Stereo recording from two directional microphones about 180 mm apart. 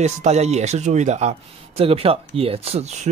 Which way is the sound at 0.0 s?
40° right (ahead or behind).